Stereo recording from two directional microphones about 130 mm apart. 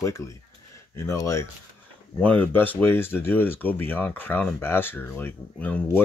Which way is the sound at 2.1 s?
10° left (ahead or behind).